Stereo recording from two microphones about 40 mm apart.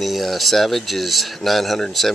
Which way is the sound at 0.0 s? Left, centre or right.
Centre.